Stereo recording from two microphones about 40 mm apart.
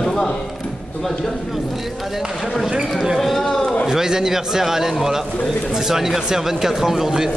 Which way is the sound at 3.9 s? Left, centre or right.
Centre.